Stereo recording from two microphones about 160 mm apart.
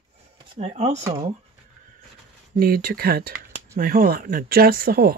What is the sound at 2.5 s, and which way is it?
Speech, 70° right (ahead or behind).